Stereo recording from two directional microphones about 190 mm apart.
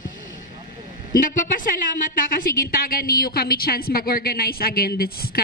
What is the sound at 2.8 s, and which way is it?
A woman's voice, 50° left (ahead or behind).